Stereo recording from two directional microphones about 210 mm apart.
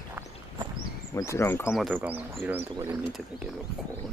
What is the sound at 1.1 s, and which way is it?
Speech, 15° left (ahead or behind).